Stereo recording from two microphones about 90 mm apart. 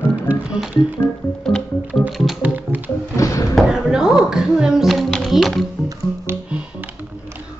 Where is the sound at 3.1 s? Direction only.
35° left (ahead or behind).